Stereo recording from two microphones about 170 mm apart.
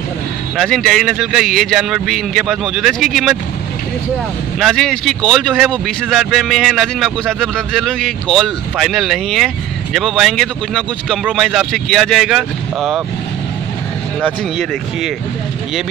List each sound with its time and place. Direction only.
0.6 s speech: centre (ahead or behind)
4.6 s speech: centre (ahead or behind)